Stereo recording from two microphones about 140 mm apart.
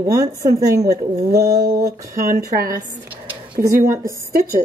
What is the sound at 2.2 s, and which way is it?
Speech, 90° right.